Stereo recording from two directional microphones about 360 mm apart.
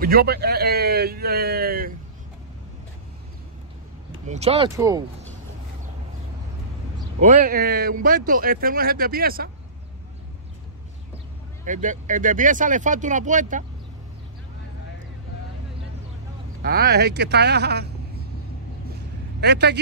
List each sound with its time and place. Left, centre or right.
0.0 s a man's voice: right
4.3 s speech: centre
7.2 s speech: right
11.6 s speech: right
16.6 s speech: right
19.4 s speech: right